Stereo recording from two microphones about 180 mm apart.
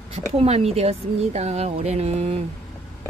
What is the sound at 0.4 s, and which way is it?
Speech, 35° right (ahead or behind).